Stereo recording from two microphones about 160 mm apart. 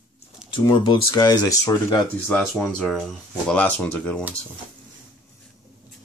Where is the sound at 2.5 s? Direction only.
Centre (ahead or behind).